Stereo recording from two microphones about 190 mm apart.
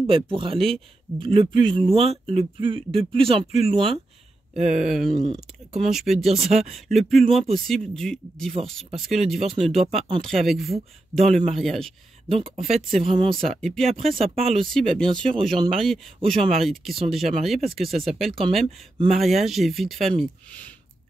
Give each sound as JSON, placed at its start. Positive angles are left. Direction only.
{"t": 0.0, "sound": "speech", "side_deg": -30}
{"t": 4.6, "sound": "speech", "side_deg": -40}
{"t": 4.8, "sound": "speech", "side_deg": 0}
{"t": 5.2, "sound": "speech", "side_deg": -30}
{"t": 5.9, "sound": "speech", "side_deg": 0}
{"t": 9.9, "sound": "speech", "side_deg": -25}
{"t": 10.2, "sound": "speech", "side_deg": 0}
{"t": 12.4, "sound": "speech", "side_deg": -35}
{"t": 13.5, "sound": "speech", "side_deg": 5}